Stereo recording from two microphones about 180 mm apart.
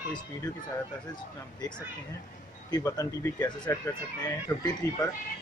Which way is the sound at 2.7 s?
20° left (ahead or behind).